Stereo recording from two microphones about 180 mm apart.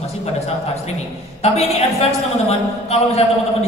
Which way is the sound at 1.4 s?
35° left (ahead or behind).